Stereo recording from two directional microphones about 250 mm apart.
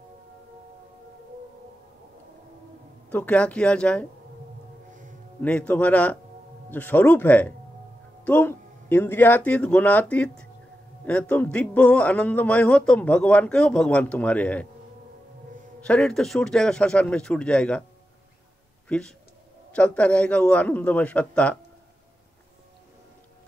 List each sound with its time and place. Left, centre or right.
3.1 s a man's voice: centre
5.4 s a man's voice: centre
15.8 s a man's voice: centre
18.9 s a man's voice: centre